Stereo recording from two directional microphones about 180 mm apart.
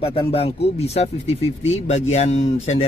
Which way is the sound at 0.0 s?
30° left (ahead or behind).